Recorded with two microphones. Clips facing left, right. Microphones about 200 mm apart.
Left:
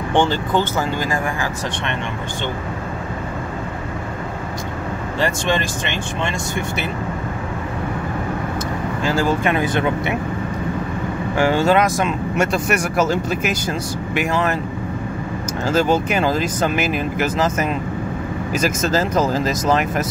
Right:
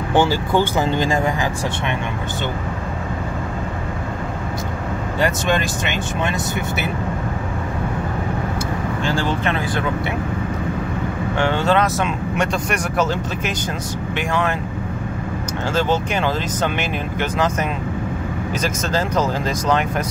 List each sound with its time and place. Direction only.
0.1 s speech: 10° right (ahead or behind)
5.2 s speech: centre (ahead or behind)
9.3 s speech: 10° left (ahead or behind)
11.3 s speech: 10° left (ahead or behind)
15.7 s speech: 10° left (ahead or behind)